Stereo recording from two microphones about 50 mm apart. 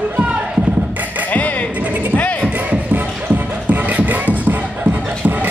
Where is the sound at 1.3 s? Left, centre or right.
Left.